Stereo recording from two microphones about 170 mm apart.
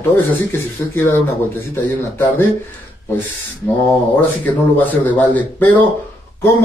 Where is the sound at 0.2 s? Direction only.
15° left (ahead or behind).